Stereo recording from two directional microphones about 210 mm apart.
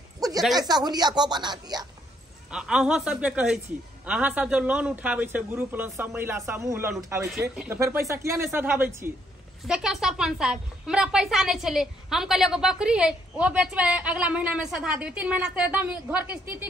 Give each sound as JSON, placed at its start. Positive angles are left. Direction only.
{"t": 0.6, "sound": "a woman's voice", "side_deg": -20}
{"t": 2.5, "sound": "a woman's voice", "side_deg": -5}